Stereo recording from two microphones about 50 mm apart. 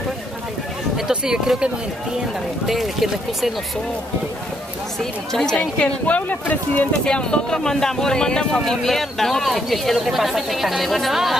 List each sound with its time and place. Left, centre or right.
0.9 s speech: centre
2.6 s speech: centre
5.3 s speech: centre
5.8 s speech: left
7.1 s speech: centre